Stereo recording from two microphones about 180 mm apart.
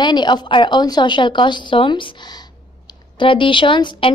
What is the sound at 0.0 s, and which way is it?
A woman's voice, 25° left (ahead or behind).